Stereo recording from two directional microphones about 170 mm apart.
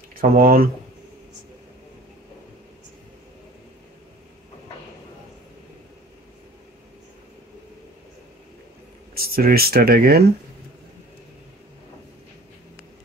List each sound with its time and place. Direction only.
0.1 s speech: 60° right (ahead or behind)
9.1 s speech: 65° right (ahead or behind)